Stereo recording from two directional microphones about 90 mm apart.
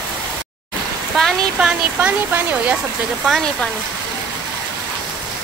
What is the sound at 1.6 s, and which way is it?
Speech, 10° right (ahead or behind).